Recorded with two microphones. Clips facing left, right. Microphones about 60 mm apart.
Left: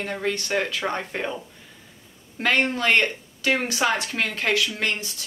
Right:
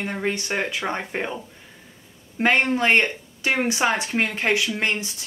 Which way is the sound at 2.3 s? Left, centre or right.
Right.